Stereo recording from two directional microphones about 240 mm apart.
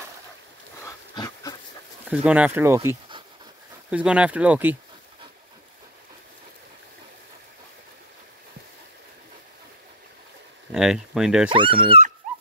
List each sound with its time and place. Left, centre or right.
0.8 s dog: centre
2.0 s speech: centre
3.9 s speech: centre
10.7 s speech: centre
11.5 s speech: right